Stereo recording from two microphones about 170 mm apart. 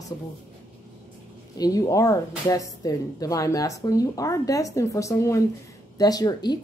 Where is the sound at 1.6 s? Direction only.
20° left (ahead or behind).